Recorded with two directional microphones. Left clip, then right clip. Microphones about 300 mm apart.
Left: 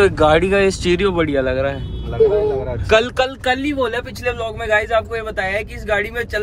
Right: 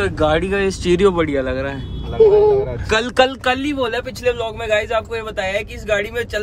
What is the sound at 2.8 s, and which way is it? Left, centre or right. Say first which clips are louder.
Speech: left 2 dB; centre.